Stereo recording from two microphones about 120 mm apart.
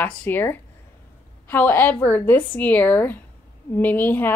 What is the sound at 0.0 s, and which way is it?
A woman's voice, 15° left (ahead or behind).